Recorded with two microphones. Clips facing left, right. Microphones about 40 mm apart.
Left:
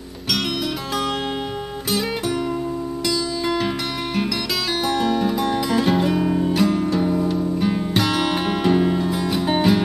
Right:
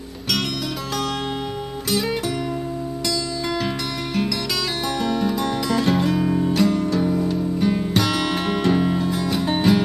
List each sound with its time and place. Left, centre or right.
1.9 s music: centre
3.4 s music: centre